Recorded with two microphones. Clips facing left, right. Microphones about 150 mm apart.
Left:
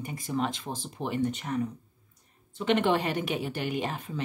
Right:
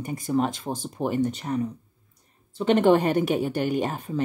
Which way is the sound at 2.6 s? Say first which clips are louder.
Right 6 dB; 40° right (ahead or behind).